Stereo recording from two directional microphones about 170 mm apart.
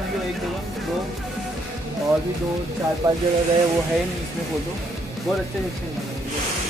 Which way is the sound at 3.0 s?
20° right (ahead or behind).